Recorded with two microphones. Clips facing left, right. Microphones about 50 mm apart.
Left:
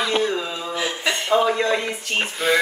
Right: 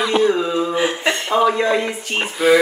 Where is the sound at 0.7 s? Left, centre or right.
Right.